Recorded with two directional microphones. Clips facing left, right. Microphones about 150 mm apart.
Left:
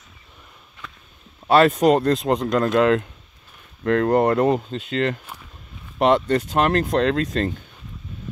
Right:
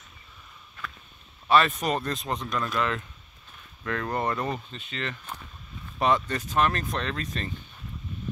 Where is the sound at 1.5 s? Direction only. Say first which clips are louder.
Left 8 dB; 80° left.